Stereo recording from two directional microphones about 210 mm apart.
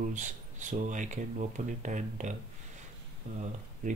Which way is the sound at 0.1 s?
35° right (ahead or behind).